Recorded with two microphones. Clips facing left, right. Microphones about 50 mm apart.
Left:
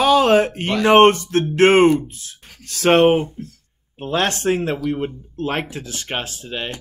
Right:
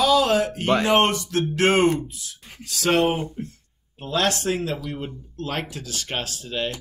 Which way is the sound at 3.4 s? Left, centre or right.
Right.